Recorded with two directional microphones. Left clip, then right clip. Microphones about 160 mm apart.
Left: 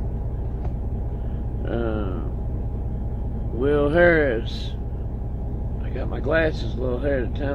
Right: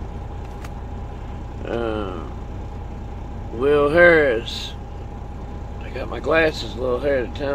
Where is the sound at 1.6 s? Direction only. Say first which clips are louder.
Right 3 dB; 75° right (ahead or behind).